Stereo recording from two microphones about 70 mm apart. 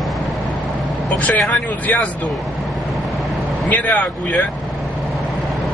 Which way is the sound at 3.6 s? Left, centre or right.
Left.